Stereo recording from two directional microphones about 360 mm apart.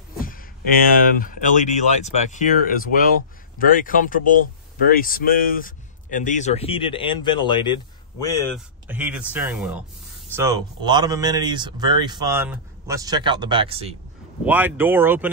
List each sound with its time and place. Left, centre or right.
1.2 s speech: left; by 13.9 s centre
14.4 s speech: centre